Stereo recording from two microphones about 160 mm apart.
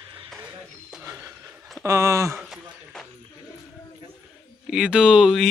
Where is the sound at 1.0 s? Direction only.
20° right (ahead or behind).